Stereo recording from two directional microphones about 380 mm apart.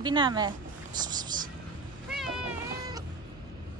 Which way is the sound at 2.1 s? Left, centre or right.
Centre.